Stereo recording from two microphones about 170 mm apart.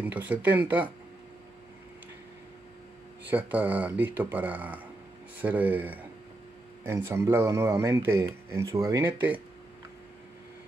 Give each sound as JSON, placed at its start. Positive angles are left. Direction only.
{"t": 0.0, "sound": "speech", "side_deg": -10}
{"t": 3.3, "sound": "speech", "side_deg": -10}